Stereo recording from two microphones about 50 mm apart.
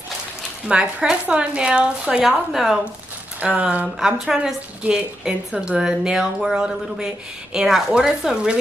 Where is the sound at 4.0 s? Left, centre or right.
Centre.